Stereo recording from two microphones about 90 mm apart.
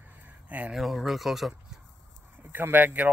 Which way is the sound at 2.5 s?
20° right (ahead or behind).